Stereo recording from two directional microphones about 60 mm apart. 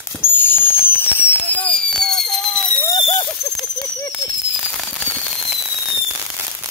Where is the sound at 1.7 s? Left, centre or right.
Centre.